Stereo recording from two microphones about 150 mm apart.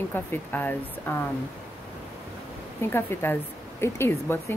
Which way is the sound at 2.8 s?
15° left (ahead or behind).